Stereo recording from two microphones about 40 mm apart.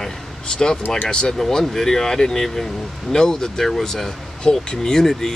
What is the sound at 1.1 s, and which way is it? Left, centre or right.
Speech, centre.